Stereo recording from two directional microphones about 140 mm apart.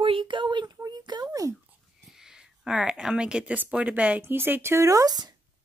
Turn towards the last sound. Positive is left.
turn(degrees=-30)  # may be behind; listen again after turning